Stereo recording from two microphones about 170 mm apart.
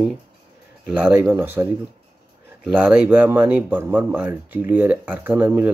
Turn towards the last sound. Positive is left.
turn(degrees=-10)  # may be behind; listen again after turning